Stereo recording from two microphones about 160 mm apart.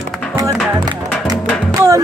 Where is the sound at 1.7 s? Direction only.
20° right (ahead or behind).